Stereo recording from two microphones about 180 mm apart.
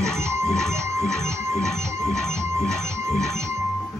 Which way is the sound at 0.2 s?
15° right (ahead or behind).